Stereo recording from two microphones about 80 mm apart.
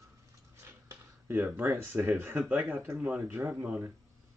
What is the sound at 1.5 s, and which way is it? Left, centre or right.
Speech, right.